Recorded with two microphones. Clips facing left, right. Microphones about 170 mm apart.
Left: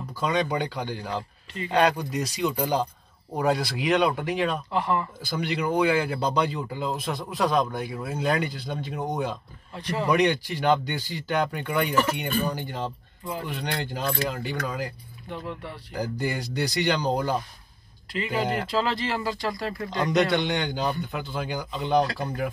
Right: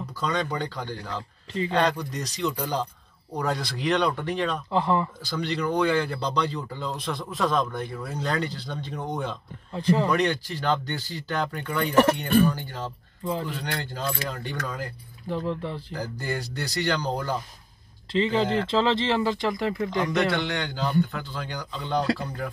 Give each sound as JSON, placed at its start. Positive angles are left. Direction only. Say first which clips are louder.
{"t": 0.2, "sound": "a man's voice", "louder": "left 3 dB", "side_deg": 10}
{"t": 4.6, "sound": "speech", "louder": "right 2 dB", "side_deg": -25}
{"t": 5.4, "sound": "a man's voice", "louder": "left 1 dB", "side_deg": 10}
{"t": 9.8, "sound": "speech", "louder": "right 7 dB", "side_deg": -30}
{"t": 10.0, "sound": "a man's voice", "louder": "left 2 dB", "side_deg": 15}
{"t": 11.9, "sound": "speech", "louder": "right 9 dB", "side_deg": -65}
{"t": 12.4, "sound": "a man's voice", "louder": "right 1 dB", "side_deg": 15}
{"t": 13.2, "sound": "speech", "louder": "right 4 dB", "side_deg": -25}
{"t": 13.5, "sound": "a man's voice", "louder": "left 1 dB", "side_deg": 15}
{"t": 15.9, "sound": "a man's voice", "louder": "left 6 dB", "side_deg": 15}
{"t": 18.1, "sound": "speech", "louder": "right 5 dB", "side_deg": -25}
{"t": 18.4, "sound": "a man's voice", "louder": "right 2 dB", "side_deg": 15}
{"t": 18.8, "sound": "speech", "louder": "right 5 dB", "side_deg": -20}
{"t": 20.1, "sound": "a man's voice", "louder": "left 2 dB", "side_deg": 20}